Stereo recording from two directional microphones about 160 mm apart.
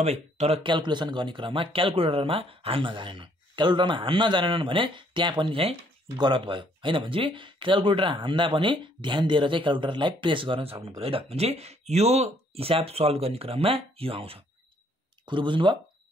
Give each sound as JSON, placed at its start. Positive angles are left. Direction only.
{"t": 0.0, "sound": "speech", "side_deg": -40}